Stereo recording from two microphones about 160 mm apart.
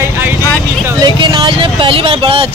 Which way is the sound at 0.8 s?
25° right (ahead or behind).